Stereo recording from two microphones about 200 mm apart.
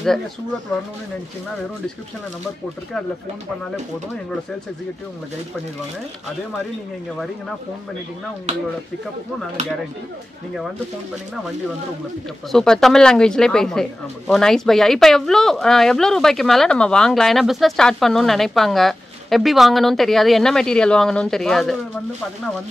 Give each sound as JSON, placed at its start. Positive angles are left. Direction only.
{"t": 12.4, "sound": "speech", "side_deg": 0}